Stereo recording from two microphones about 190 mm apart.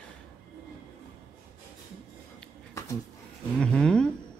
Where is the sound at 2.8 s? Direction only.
15° left (ahead or behind).